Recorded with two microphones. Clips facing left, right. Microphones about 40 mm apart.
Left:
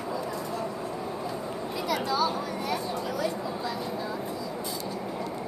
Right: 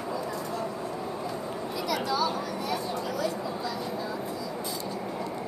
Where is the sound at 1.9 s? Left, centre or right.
Left.